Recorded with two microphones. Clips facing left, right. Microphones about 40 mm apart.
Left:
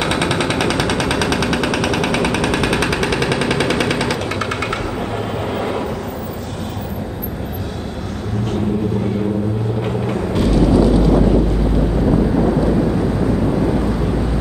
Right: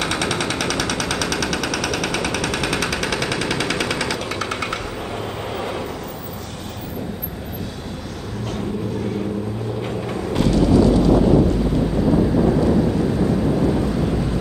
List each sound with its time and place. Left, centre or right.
0.0 s machine gun: centre
3.9 s vehicle: centre
9.8 s vehicle: centre